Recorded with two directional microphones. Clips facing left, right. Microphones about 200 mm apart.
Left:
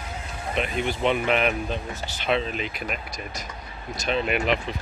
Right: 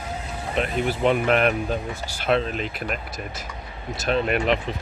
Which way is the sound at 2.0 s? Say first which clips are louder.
Right 2 dB; 10° right (ahead or behind).